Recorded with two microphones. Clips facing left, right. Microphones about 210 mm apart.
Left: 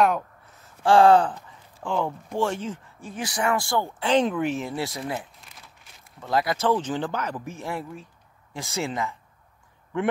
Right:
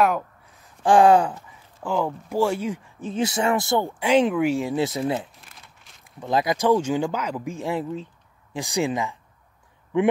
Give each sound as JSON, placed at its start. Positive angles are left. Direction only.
{"t": 0.8, "sound": "speech", "side_deg": -15}